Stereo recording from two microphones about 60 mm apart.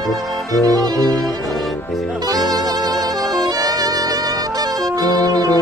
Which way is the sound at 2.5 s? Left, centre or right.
Right.